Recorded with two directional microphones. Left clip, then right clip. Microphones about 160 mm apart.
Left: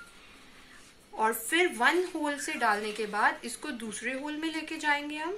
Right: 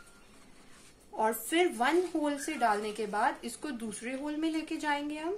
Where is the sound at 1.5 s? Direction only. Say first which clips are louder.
Left 3 dB; 75° right (ahead or behind).